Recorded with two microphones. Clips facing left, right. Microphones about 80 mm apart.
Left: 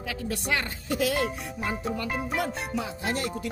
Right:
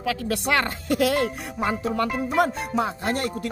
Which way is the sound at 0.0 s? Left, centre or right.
Right.